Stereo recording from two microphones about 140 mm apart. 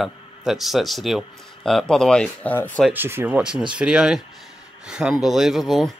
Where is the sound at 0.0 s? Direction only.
Centre (ahead or behind).